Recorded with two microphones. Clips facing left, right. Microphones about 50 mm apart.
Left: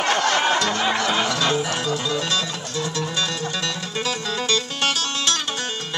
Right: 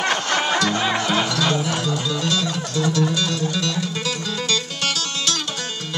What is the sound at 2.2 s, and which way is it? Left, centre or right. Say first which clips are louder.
Music: right 2 dB; left.